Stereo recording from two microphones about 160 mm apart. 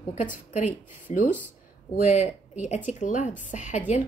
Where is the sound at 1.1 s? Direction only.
45° left (ahead or behind).